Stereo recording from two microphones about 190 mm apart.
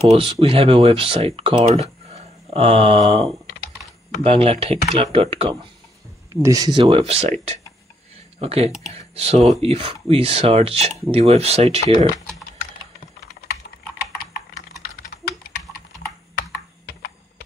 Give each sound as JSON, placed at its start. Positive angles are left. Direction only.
{"t": 0.1, "sound": "speech", "side_deg": -30}
{"t": 6.8, "sound": "speech", "side_deg": -30}
{"t": 16.3, "sound": "computer keyboard", "side_deg": 55}